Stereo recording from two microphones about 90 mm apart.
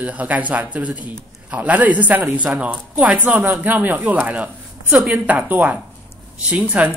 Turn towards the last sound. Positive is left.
turn(degrees=-15)  # may be behind; listen again after turning